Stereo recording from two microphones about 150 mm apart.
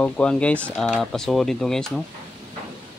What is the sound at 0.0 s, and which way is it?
Speech, 5° left (ahead or behind).